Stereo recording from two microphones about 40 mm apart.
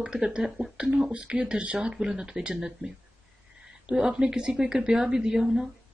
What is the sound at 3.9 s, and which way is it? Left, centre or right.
A woman's voice, centre.